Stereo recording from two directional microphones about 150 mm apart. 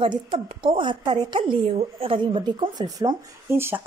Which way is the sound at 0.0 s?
35° right (ahead or behind).